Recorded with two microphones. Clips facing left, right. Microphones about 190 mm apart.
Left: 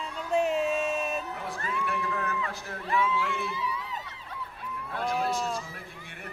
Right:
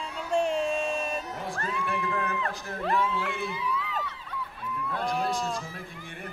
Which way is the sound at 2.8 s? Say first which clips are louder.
Even; 60° right (ahead or behind).